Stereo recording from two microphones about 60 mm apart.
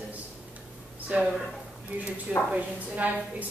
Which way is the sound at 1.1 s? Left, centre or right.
Right.